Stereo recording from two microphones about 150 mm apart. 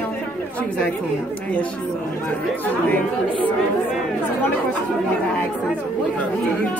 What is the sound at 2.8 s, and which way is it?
Speech, 10° left (ahead or behind).